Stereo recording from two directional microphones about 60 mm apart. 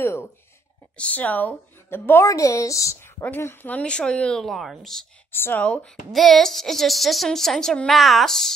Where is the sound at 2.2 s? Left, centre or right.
Left.